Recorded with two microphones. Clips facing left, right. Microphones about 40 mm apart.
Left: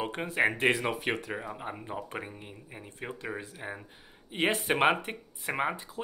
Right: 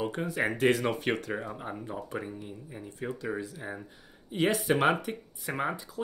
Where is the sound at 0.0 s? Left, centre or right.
Left.